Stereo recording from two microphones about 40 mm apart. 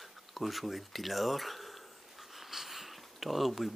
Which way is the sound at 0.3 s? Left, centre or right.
Centre.